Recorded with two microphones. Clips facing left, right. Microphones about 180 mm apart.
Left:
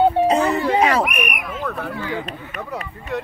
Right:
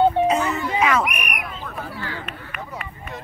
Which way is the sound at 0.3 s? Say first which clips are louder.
Left 4 dB; 35° left (ahead or behind).